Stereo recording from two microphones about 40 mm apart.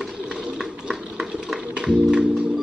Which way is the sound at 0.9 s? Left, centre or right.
Centre.